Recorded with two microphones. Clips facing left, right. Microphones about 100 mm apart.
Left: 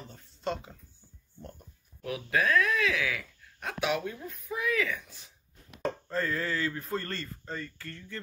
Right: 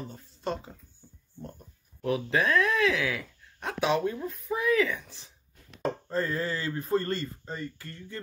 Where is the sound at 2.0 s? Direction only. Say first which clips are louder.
Right 3 dB; 30° right (ahead or behind).